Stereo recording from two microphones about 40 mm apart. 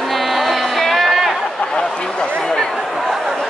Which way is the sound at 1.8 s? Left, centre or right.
Centre.